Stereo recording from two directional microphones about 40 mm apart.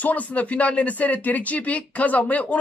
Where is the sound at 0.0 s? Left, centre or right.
Left.